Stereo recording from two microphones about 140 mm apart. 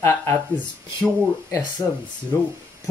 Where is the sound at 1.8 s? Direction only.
25° left (ahead or behind).